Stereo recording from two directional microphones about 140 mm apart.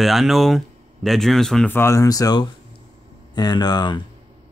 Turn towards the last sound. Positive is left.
turn(degrees=30)  # may be behind; listen again after turning